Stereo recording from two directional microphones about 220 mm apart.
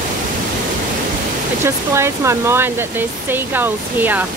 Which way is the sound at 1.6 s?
10° right (ahead or behind).